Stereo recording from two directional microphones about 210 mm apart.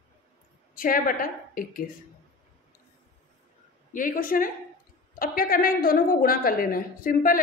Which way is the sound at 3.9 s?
40° left (ahead or behind).